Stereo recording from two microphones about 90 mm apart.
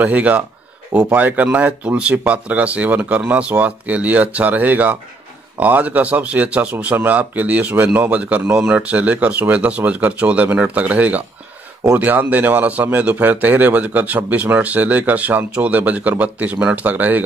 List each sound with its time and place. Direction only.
0.0 s speech: 15° right (ahead or behind)